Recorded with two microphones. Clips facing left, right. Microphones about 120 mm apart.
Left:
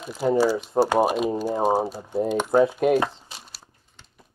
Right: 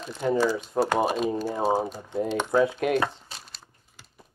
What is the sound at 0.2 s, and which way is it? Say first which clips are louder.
Speech: left 3 dB; 25° left (ahead or behind).